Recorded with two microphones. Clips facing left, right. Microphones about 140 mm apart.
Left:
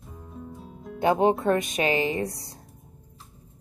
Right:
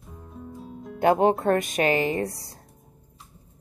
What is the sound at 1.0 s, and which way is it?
A woman's voice, 50° right (ahead or behind).